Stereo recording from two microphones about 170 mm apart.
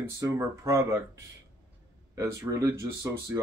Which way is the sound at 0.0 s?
15° right (ahead or behind).